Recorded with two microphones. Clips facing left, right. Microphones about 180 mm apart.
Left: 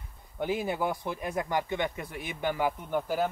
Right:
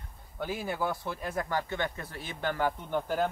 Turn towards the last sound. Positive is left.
turn(degrees=5)  # may be behind; listen again after turning